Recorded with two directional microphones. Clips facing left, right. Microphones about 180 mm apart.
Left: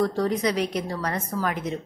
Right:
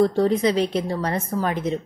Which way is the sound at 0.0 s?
25° right (ahead or behind).